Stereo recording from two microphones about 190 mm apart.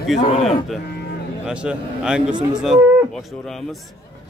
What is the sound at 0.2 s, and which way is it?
Speech, 35° left (ahead or behind).